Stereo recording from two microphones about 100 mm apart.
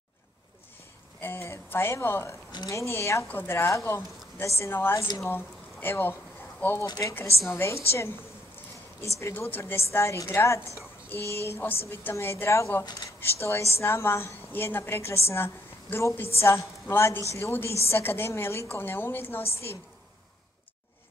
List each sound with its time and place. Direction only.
1.2 s a woman's voice: 25° left (ahead or behind)
6.9 s speech: 35° left (ahead or behind)
7.4 s a woman's voice: 25° left (ahead or behind)
9.2 s a woman's voice: 20° left (ahead or behind)